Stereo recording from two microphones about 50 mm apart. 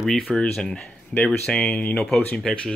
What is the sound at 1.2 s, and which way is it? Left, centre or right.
Speech, centre.